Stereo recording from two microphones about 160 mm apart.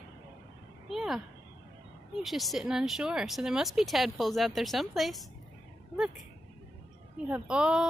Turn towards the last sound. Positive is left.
turn(degrees=-5)  # may be behind; listen again after turning